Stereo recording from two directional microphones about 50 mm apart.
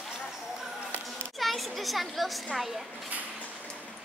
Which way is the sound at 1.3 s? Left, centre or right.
Centre.